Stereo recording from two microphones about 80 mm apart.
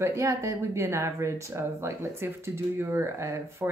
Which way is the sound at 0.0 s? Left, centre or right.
Right.